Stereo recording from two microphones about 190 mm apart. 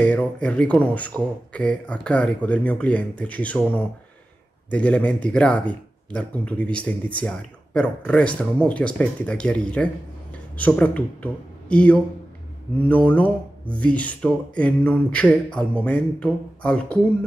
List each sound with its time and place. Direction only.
0.0 s speech: 5° left (ahead or behind)